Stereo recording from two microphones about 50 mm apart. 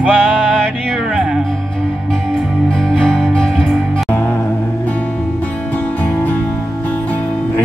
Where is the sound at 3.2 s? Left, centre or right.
Centre.